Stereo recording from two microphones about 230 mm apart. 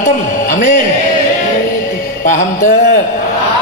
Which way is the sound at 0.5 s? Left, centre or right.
Left.